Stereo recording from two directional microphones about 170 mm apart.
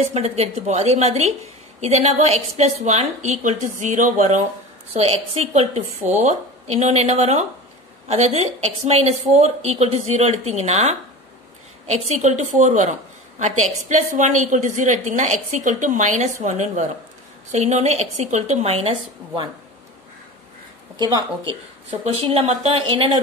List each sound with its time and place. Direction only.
0.1 s a woman's voice: 40° right (ahead or behind)
20.9 s speech: 25° right (ahead or behind)
22.0 s a woman's voice: 35° right (ahead or behind)